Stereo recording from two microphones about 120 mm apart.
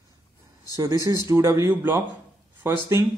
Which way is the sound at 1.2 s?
25° right (ahead or behind).